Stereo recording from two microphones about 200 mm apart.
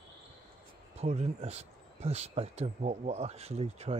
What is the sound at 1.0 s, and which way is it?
Speech, 35° right (ahead or behind).